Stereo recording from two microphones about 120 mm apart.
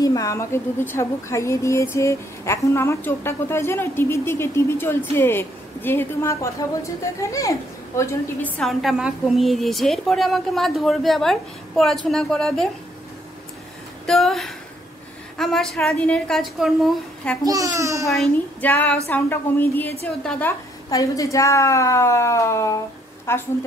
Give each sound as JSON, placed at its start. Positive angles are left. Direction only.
{"t": 0.0, "sound": "a woman's voice", "side_deg": 30}
{"t": 8.4, "sound": "a woman's voice", "side_deg": 15}
{"t": 8.6, "sound": "a woman's voice", "side_deg": 0}
{"t": 14.0, "sound": "a woman's voice", "side_deg": 0}
{"t": 17.5, "sound": "a child's voice", "side_deg": -25}
{"t": 18.0, "sound": "a woman's voice", "side_deg": 0}
{"t": 18.6, "sound": "a woman's voice", "side_deg": 15}
{"t": 20.9, "sound": "a woman's voice", "side_deg": 30}